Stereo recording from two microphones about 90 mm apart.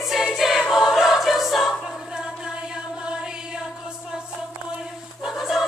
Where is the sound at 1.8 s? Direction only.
5° right (ahead or behind).